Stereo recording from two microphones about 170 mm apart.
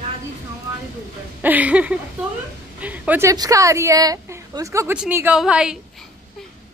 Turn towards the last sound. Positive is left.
turn(degrees=-5)  # may be behind; listen again after turning